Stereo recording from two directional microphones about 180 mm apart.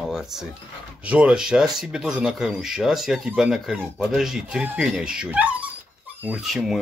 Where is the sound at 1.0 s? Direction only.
5° right (ahead or behind).